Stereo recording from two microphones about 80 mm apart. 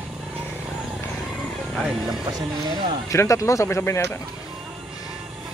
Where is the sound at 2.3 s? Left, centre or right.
Right.